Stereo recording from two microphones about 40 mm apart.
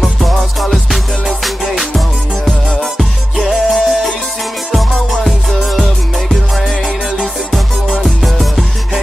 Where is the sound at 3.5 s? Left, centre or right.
Centre.